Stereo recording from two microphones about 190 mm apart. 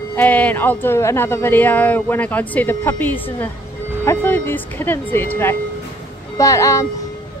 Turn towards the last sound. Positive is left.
turn(degrees=15)  # may be behind; listen again after turning